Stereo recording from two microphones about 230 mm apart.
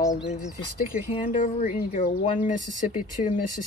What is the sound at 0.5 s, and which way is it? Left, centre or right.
Speech, left.